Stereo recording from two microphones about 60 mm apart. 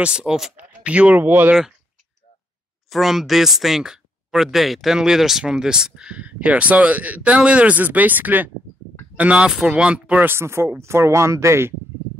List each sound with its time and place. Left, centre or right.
0.0 s speech: centre
1.2 s speech: right
2.9 s speech: centre; by 10.2 s right
10.2 s speech: right